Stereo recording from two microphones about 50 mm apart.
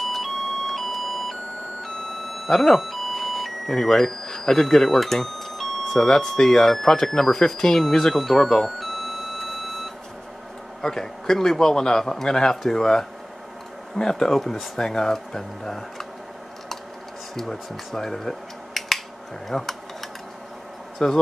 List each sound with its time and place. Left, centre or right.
0.0 s ice cream truck: centre
2.4 s a man's voice: centre
8.7 s a sound: centre
10.8 s a man's voice: centre
17.4 s a man's voice: centre
21.0 s a man's voice: centre